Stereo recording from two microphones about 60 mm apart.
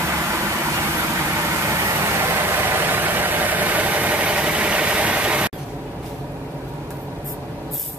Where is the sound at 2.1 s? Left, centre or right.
Right.